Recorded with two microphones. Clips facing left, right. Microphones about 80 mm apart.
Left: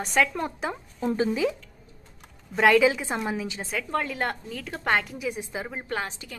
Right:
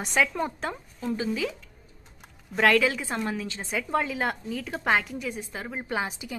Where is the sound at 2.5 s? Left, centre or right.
Centre.